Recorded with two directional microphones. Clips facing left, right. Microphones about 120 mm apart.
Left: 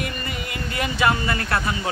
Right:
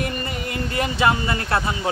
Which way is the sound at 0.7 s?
30° right (ahead or behind).